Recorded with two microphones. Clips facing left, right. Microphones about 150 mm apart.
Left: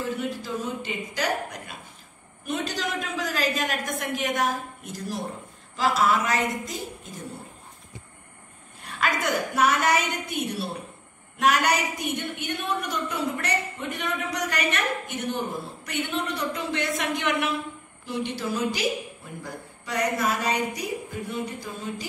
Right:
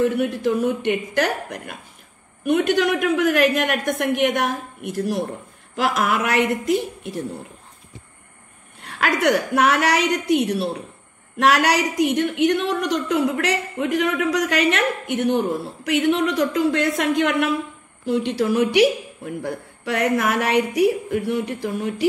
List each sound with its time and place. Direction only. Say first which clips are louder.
0.0 s a woman's voice: right 10 dB; 70° right (ahead or behind)
5.9 s a woman's voice: right 3 dB; 75° right (ahead or behind)
8.8 s a woman's voice: right 7 dB; 65° right (ahead or behind)